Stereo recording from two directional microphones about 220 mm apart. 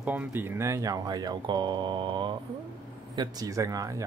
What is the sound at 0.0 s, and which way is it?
Speech, 5° right (ahead or behind).